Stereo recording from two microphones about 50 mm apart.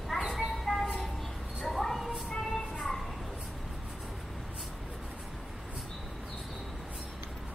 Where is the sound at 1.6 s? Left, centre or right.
Centre.